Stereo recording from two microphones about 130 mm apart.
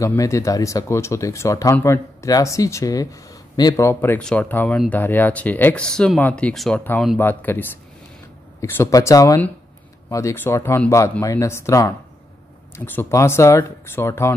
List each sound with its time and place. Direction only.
0.0 s speech: 25° left (ahead or behind); by 6.8 s 5° left (ahead or behind)
7.2 s speech: 15° left (ahead or behind)